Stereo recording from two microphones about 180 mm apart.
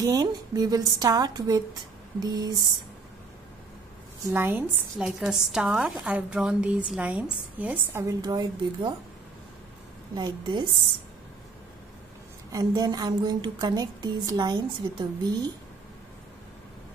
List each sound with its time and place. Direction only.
0.0 s a woman's voice: 20° right (ahead or behind)
4.3 s a woman's voice: 10° right (ahead or behind)
8.2 s a woman's voice: 25° right (ahead or behind)
10.1 s a woman's voice: 25° right (ahead or behind)
12.5 s a woman's voice: 20° right (ahead or behind)